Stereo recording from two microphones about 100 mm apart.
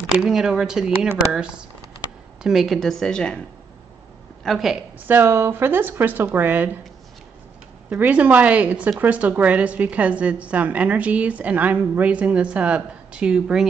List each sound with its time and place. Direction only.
0.2 s a woman's voice: 5° right (ahead or behind)
4.5 s a woman's voice: centre (ahead or behind)
4.9 s speech: 20° right (ahead or behind)
7.9 s a woman's voice: 15° right (ahead or behind)